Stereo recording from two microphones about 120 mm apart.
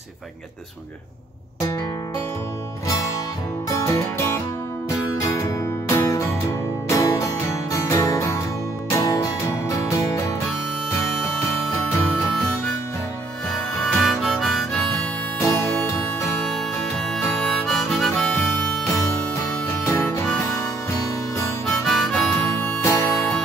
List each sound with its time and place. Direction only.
3.6 s music: 25° left (ahead or behind)
13.9 s harmonica: centre (ahead or behind)
14.9 s music: 25° left (ahead or behind)
17.4 s harmonica: 5° left (ahead or behind)
19.8 s music: 20° left (ahead or behind)
21.8 s harmonica: centre (ahead or behind)
22.4 s music: 20° left (ahead or behind)